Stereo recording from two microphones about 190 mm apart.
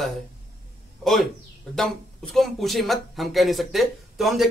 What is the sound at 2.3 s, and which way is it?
Speech, centre (ahead or behind).